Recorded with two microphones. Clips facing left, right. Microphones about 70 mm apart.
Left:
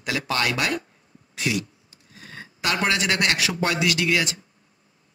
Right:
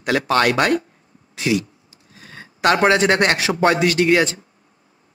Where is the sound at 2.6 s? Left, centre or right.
Right.